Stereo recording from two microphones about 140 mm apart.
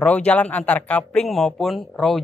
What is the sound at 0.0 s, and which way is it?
A man's voice, 10° left (ahead or behind).